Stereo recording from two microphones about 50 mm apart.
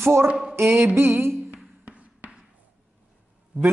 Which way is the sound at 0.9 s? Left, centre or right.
Right.